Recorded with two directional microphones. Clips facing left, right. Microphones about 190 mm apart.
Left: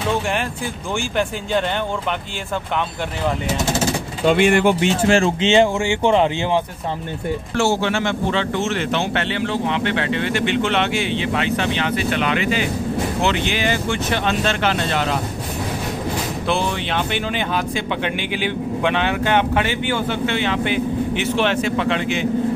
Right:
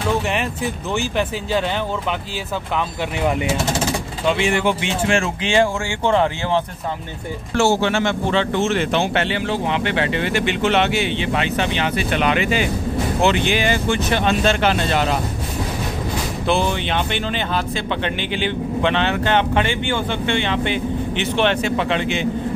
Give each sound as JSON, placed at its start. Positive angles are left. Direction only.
{"t": 0.9, "sound": "speech", "side_deg": 0}
{"t": 4.3, "sound": "speech", "side_deg": 55}
{"t": 5.4, "sound": "speech", "side_deg": 20}
{"t": 7.5, "sound": "speech", "side_deg": -35}
{"t": 8.6, "sound": "speech", "side_deg": -15}
{"t": 12.2, "sound": "speech", "side_deg": -15}
{"t": 14.2, "sound": "speech", "side_deg": -10}
{"t": 16.4, "sound": "speech", "side_deg": 0}